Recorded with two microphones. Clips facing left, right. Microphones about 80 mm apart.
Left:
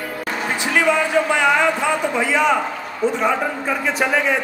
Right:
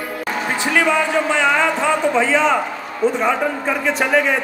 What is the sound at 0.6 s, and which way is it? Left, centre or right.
A man's voice, centre.